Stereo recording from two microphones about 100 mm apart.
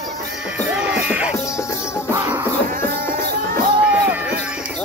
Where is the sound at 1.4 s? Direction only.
30° left (ahead or behind).